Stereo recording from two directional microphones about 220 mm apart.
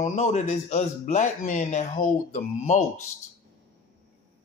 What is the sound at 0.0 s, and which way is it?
A man's voice, 30° left (ahead or behind).